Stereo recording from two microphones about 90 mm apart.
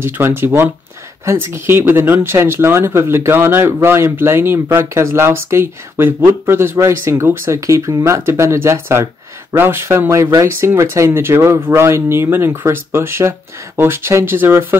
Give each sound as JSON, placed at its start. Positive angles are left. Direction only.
{"t": 0.0, "sound": "speech", "side_deg": -25}